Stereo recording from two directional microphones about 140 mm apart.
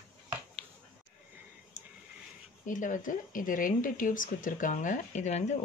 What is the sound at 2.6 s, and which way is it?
Speech, 65° left (ahead or behind).